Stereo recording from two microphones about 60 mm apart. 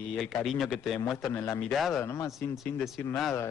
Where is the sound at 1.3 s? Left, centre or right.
Left.